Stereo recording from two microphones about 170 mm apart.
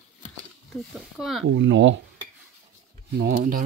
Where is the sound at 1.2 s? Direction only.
Centre (ahead or behind).